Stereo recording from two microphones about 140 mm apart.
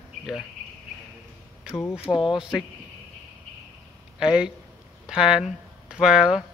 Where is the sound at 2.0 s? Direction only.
35° left (ahead or behind).